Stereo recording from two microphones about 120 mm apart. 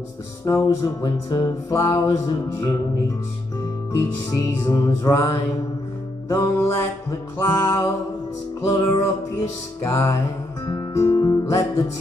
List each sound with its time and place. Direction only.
0.5 s music: 25° left (ahead or behind)
3.9 s music: 25° left (ahead or behind)
6.3 s music: 25° left (ahead or behind)
10.7 s guitar: 25° left (ahead or behind)